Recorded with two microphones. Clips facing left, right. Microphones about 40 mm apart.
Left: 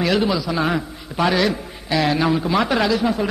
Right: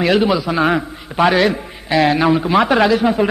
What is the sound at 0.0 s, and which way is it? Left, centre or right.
A man's voice, right.